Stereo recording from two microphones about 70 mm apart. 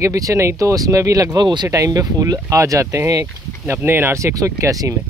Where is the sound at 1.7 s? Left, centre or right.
Right.